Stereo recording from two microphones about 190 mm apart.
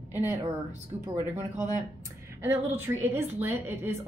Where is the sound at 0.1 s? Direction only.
10° right (ahead or behind).